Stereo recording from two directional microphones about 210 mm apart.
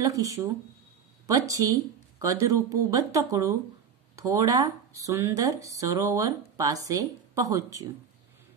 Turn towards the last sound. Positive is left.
turn(degrees=-15)  # may be behind; listen again after turning